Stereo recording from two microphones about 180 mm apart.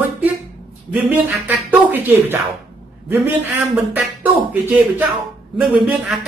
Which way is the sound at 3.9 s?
10° right (ahead or behind).